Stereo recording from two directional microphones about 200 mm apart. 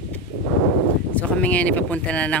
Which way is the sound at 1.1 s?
5° left (ahead or behind).